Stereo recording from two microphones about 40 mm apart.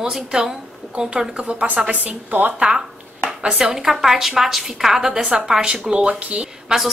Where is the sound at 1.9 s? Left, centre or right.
Right.